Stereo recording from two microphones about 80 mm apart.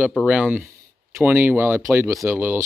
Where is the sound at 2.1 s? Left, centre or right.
Right.